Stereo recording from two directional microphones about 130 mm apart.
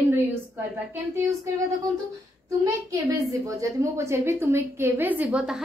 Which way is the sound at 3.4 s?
25° right (ahead or behind).